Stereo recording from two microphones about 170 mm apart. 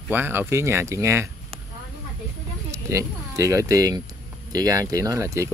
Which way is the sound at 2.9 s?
20° right (ahead or behind).